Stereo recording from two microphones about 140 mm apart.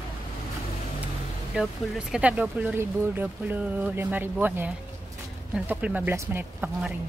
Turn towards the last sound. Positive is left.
turn(degrees=-15)  # may be behind; listen again after turning